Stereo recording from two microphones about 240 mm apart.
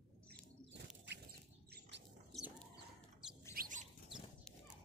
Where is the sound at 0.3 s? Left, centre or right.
Right.